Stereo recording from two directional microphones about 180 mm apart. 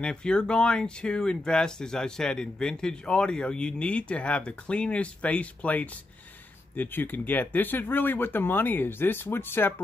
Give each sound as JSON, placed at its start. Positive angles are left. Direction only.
{"t": 0.0, "sound": "speech", "side_deg": 5}